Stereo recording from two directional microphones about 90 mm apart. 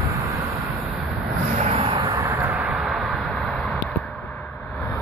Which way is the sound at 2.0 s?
40° right (ahead or behind).